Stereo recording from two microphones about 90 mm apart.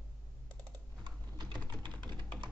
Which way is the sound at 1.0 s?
55° right (ahead or behind).